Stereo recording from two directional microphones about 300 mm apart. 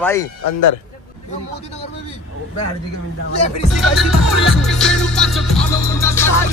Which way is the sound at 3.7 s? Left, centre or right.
Centre.